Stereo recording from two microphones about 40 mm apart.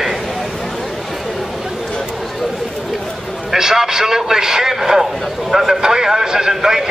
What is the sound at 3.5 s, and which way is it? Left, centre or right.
A man's voice, centre.